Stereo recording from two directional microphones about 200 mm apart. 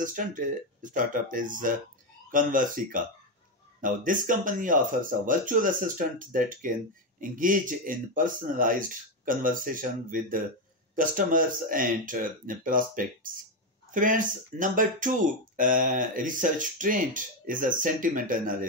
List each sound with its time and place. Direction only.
0.0 s speech: 40° right (ahead or behind)